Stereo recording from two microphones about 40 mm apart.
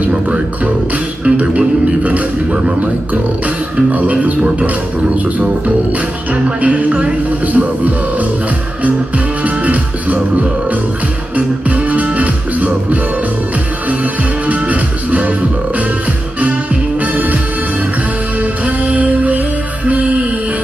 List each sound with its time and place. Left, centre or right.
1.3 s music: right
3.9 s music: right
6.4 s music: right
11.3 s music: right
14.5 s music: right
17.0 s music: right
18.9 s music: right